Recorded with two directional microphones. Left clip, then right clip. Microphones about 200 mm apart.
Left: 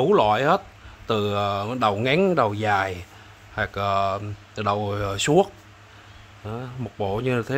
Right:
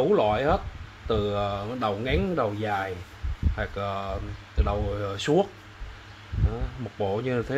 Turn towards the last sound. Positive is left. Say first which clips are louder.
# left 2 dB
turn(degrees=20)  # may be behind; listen again after turning